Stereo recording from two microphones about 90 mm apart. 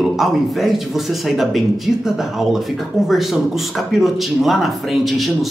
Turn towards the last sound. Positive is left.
turn(degrees=0)  # may be behind; listen again after turning